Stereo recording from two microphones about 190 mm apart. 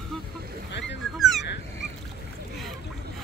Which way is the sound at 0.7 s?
70° left (ahead or behind).